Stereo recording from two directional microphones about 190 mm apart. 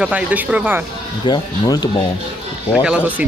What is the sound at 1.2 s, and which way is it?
Speech, 25° left (ahead or behind).